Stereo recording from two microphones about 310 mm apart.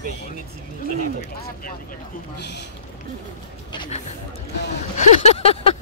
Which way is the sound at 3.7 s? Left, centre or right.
Centre.